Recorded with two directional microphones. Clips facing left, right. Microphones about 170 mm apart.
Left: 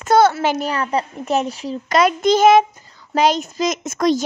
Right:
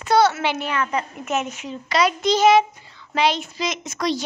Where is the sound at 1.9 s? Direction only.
50° left (ahead or behind).